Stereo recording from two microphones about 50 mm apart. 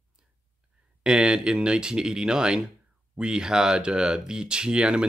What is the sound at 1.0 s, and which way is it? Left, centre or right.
Speech, centre.